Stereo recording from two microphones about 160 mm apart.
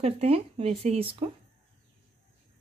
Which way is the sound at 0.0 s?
40° right (ahead or behind).